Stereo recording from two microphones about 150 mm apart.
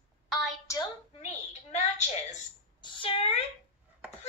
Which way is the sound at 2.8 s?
35° left (ahead or behind).